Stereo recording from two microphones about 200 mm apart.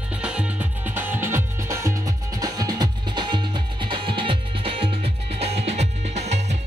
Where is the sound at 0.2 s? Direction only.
5° right (ahead or behind).